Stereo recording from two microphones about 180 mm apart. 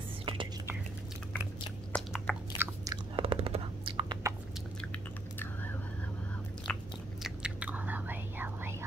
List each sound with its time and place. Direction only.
0.2 s whispering: 30° right (ahead or behind)
1.9 s chewing: 5° left (ahead or behind)
2.5 s chewing: 15° right (ahead or behind)
4.9 s chewing: 10° left (ahead or behind)
6.7 s biting: 5° left (ahead or behind)
7.2 s whispering: 5° right (ahead or behind)